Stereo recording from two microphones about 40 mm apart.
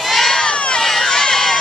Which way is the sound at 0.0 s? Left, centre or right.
Centre.